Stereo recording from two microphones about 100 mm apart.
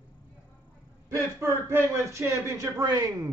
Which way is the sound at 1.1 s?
25° right (ahead or behind).